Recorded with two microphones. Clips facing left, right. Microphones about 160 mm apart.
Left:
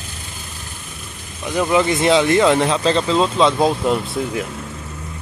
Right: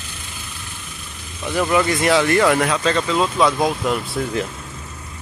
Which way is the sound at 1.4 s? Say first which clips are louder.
Left 1 dB; 15° left (ahead or behind).